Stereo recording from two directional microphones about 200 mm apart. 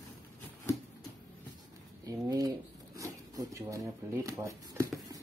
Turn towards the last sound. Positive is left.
turn(degrees=-15)  # may be behind; listen again after turning